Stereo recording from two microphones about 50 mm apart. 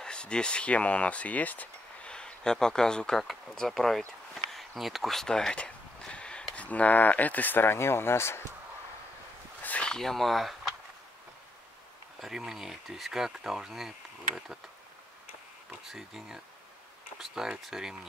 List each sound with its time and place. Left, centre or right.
0.0 s speech: centre
2.0 s speech: centre
4.5 s a sound: centre
5.1 s a sound: centre
6.5 s speech: left
9.6 s a sound: left
9.8 s speech: centre
12.2 s speech: centre
15.9 s speech: centre